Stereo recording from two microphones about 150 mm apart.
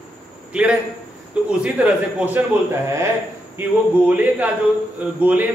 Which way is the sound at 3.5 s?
10° right (ahead or behind).